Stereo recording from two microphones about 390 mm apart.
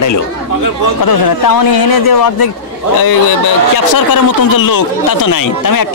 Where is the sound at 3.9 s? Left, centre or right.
Left.